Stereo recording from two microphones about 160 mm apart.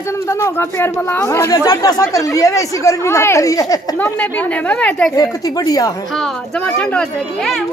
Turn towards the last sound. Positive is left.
turn(degrees=0)  # may be behind; listen again after turning